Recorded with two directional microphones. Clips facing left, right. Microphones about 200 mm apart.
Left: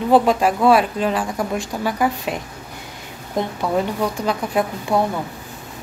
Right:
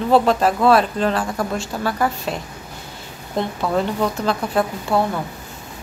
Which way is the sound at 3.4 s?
10° left (ahead or behind).